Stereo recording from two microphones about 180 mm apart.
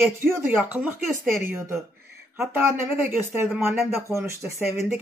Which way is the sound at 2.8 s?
10° right (ahead or behind).